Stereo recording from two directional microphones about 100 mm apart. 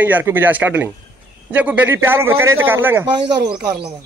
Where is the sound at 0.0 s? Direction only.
20° right (ahead or behind).